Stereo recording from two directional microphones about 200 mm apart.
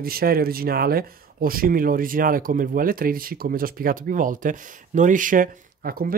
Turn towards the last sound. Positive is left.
turn(degrees=-45)  # may be behind; listen again after turning